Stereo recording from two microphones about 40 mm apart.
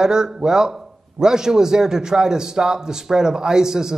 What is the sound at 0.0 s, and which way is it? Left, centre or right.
A man's voice, centre.